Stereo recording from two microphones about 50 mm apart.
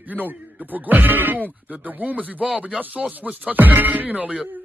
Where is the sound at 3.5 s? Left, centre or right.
Right.